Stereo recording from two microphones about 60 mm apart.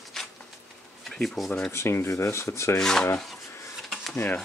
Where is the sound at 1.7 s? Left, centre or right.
Left.